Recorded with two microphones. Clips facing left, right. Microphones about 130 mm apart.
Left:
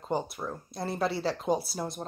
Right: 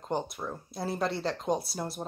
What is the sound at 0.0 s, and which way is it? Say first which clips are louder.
Speech: left 1 dB; 5° left (ahead or behind).